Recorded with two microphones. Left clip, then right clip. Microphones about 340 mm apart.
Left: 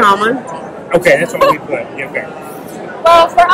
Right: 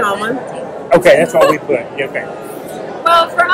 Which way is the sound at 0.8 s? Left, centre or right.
Centre.